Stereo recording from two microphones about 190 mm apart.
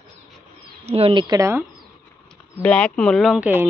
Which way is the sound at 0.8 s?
30° right (ahead or behind).